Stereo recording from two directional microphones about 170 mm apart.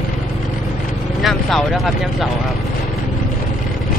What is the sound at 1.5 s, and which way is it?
Speech, centre (ahead or behind).